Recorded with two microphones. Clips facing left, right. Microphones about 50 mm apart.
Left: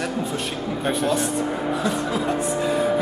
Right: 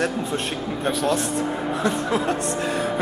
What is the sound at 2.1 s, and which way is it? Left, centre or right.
Speech, centre.